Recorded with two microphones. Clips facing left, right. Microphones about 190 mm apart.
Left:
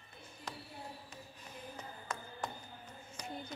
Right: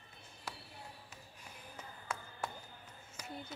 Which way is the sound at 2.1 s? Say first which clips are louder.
Even; 5° right (ahead or behind).